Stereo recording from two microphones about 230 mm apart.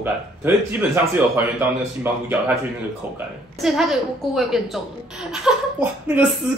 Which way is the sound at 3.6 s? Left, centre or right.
Centre.